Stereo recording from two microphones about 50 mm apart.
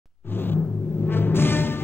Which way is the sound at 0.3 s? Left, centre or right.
Left.